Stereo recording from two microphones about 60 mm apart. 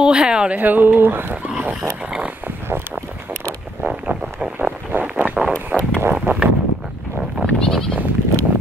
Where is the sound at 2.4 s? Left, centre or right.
Right.